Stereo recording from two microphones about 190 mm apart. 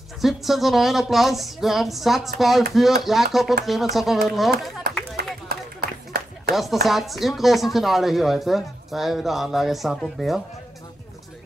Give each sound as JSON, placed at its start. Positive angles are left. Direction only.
{"t": 0.2, "sound": "speech", "side_deg": 0}
{"t": 5.1, "sound": "a sound", "side_deg": -50}
{"t": 6.5, "sound": "speech", "side_deg": 0}